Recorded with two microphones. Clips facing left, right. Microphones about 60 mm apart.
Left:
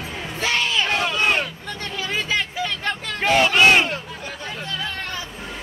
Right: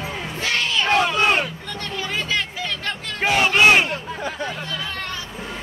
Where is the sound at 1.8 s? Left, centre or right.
Centre.